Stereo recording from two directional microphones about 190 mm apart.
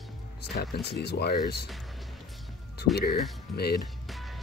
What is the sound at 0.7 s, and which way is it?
Speech, 60° left (ahead or behind).